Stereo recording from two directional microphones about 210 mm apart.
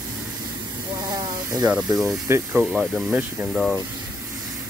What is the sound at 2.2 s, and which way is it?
Speech, 10° right (ahead or behind).